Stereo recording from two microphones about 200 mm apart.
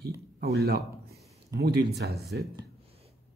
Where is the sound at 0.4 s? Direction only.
50° right (ahead or behind).